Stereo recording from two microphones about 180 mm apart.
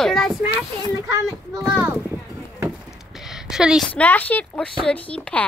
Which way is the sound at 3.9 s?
10° left (ahead or behind).